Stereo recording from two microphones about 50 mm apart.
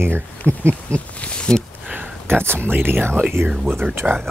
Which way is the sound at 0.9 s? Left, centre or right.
Left.